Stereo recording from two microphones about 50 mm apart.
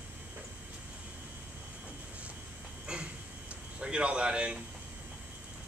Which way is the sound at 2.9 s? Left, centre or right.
Centre.